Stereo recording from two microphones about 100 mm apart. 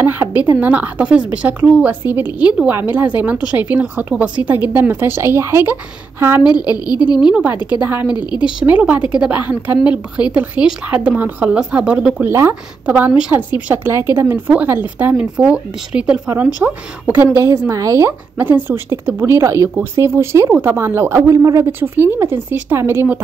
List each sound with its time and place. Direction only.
0.0 s speech: 20° right (ahead or behind)
6.4 s a woman's voice: 40° left (ahead or behind)
7.2 s speech: 5° right (ahead or behind)
7.8 s speech: 20° right (ahead or behind)
12.3 s speech: 25° right (ahead or behind)
18.4 s speech: 20° right (ahead or behind)